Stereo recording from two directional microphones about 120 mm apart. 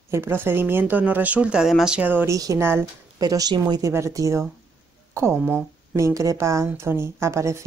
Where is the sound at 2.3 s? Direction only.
25° right (ahead or behind).